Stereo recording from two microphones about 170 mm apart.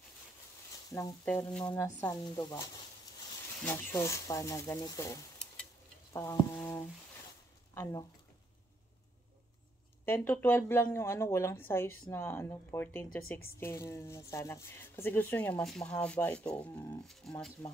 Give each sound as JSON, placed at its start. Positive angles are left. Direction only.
{"t": 0.8, "sound": "frying", "side_deg": 20}
{"t": 1.2, "sound": "a woman's voice", "side_deg": 10}
{"t": 2.2, "sound": "a woman's voice", "side_deg": 25}
{"t": 10.0, "sound": "a woman's voice", "side_deg": 10}